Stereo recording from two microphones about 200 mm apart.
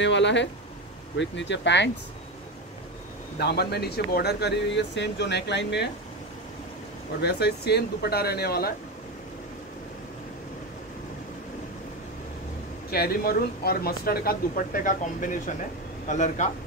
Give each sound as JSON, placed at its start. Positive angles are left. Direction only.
{"t": 0.0, "sound": "speech", "side_deg": 65}
{"t": 3.3, "sound": "speech", "side_deg": 55}
{"t": 7.2, "sound": "speech", "side_deg": 55}
{"t": 12.9, "sound": "speech", "side_deg": 50}